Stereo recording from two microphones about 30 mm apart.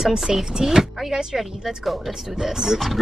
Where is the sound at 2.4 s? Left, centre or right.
Centre.